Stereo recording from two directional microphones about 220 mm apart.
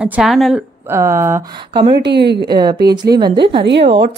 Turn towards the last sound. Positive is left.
turn(degrees=-55)  # may be behind; listen again after turning